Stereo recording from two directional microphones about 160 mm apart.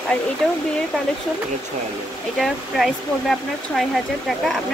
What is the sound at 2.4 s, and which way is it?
Speech, centre (ahead or behind).